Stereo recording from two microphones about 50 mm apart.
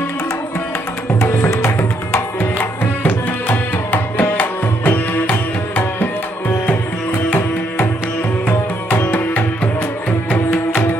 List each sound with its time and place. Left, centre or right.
1.3 s music: left
3.0 s tabla: left
7.2 s music: left